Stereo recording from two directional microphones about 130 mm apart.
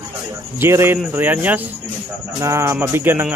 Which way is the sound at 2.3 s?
25° right (ahead or behind).